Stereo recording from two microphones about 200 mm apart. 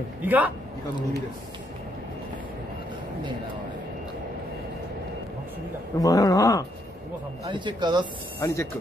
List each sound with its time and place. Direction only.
0.2 s a man's voice: 10° right (ahead or behind)
5.9 s speech: 15° left (ahead or behind)
7.4 s speech: 20° right (ahead or behind)
8.4 s speech: 15° left (ahead or behind)